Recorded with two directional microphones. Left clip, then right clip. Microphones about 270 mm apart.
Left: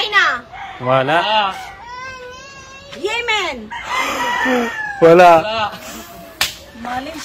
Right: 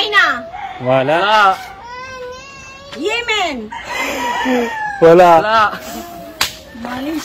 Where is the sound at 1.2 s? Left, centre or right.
Centre.